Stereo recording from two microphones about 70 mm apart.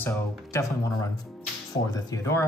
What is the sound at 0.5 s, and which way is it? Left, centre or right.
Speech, left.